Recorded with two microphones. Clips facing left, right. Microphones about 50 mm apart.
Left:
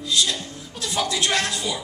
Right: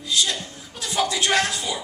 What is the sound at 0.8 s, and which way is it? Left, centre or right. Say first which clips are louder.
A man's voice: right 1 dB; centre.